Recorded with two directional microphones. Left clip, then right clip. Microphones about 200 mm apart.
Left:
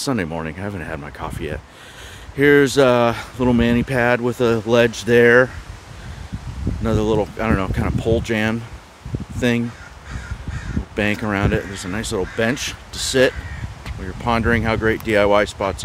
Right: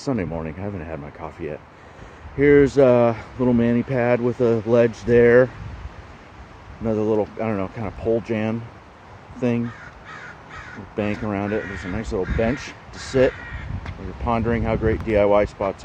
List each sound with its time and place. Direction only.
0.1 s speech: 20° left (ahead or behind)
2.7 s speech: 25° left (ahead or behind)
5.0 s speech: 10° left (ahead or behind)
6.8 s speech: 30° left (ahead or behind)
11.0 s speech: 25° left (ahead or behind)
12.0 s speech: 30° left (ahead or behind)
12.9 s speech: 30° left (ahead or behind)
14.2 s speech: 20° left (ahead or behind)